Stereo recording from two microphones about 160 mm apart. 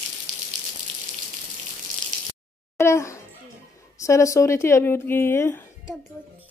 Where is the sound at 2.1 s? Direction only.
55° right (ahead or behind).